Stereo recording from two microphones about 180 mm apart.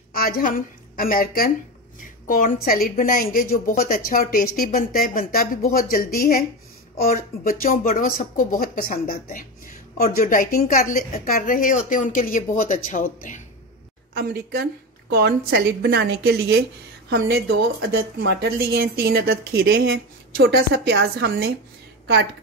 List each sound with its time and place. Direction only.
0.1 s a woman's voice: 55° left (ahead or behind)
14.1 s a woman's voice: 60° right (ahead or behind)